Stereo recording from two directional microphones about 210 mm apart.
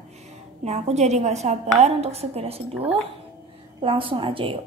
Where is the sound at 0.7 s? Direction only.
30° right (ahead or behind).